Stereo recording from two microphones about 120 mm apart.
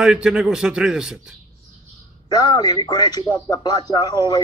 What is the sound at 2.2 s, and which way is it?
A man's voice, 35° left (ahead or behind).